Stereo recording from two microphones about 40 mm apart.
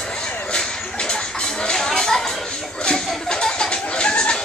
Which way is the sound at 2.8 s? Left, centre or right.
Centre.